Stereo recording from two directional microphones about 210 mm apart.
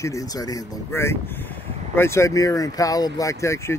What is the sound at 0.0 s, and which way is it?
Speech, 15° left (ahead or behind).